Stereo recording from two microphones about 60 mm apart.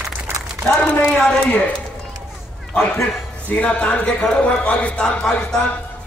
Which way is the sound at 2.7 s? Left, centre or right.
Centre.